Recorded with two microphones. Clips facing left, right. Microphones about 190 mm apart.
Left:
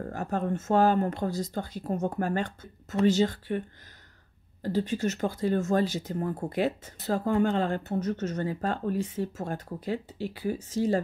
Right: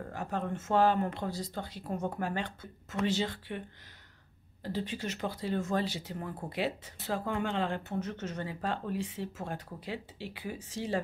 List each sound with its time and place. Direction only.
0.0 s speech: 45° left (ahead or behind)
4.6 s speech: 45° left (ahead or behind)